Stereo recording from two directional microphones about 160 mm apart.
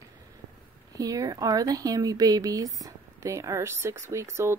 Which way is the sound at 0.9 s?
20° right (ahead or behind).